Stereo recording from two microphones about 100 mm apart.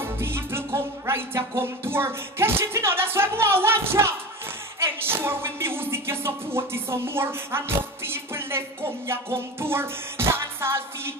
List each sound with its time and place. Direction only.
0.0 s speech: 25° right (ahead or behind)